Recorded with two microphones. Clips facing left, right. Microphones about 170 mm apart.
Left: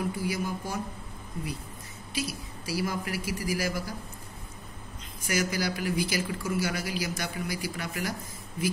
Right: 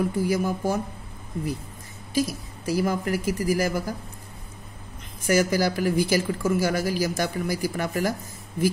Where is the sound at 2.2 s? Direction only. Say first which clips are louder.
Right 7 dB; 50° right (ahead or behind).